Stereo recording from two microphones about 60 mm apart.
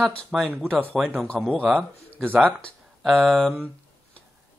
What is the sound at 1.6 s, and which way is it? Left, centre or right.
Speech, right.